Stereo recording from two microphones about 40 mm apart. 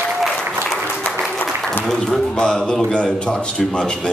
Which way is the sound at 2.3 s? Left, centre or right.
Left.